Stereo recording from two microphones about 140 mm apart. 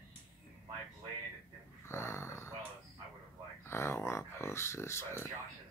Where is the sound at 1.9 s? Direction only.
20° left (ahead or behind).